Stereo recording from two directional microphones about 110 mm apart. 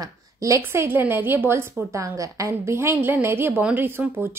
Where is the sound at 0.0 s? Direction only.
30° right (ahead or behind).